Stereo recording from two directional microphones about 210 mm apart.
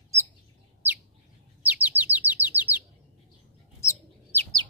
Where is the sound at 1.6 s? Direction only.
5° right (ahead or behind).